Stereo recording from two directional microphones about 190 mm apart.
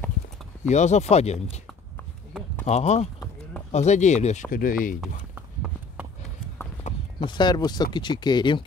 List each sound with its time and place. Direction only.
0.7 s speech: 35° left (ahead or behind)
2.6 s speech: 35° left (ahead or behind)
5.3 s a sound: 10° right (ahead or behind)
6.8 s horse: 40° left (ahead or behind)
7.2 s speech: 25° left (ahead or behind)